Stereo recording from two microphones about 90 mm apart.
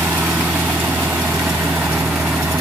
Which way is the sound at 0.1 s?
10° right (ahead or behind).